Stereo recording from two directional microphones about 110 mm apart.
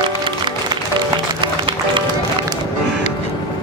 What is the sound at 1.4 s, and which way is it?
Music, 50° right (ahead or behind).